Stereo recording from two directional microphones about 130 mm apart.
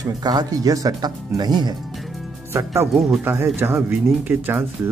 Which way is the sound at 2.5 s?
20° right (ahead or behind).